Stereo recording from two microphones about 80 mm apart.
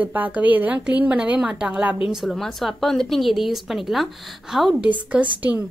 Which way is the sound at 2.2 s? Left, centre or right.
Centre.